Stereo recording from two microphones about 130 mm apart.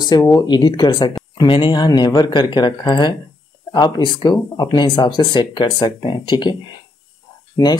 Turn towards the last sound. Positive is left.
turn(degrees=25)  # may be behind; listen again after turning